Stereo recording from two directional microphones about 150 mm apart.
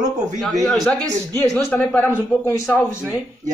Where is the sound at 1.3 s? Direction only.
15° left (ahead or behind).